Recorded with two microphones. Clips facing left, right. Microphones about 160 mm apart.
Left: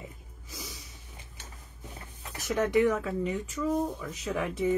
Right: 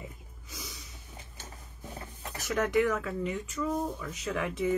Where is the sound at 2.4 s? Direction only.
20° left (ahead or behind).